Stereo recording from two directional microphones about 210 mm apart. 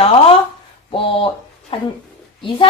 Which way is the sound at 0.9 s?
25° left (ahead or behind).